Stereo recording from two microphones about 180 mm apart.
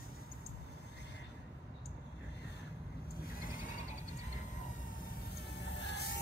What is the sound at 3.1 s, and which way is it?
Vehicle, 55° left (ahead or behind).